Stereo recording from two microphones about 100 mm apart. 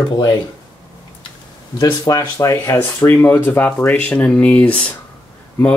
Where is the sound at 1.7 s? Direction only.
45° left (ahead or behind).